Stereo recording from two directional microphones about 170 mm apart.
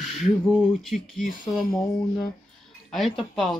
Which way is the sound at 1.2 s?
55° left (ahead or behind).